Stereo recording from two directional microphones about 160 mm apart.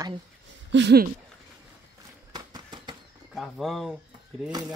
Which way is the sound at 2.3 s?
25° right (ahead or behind).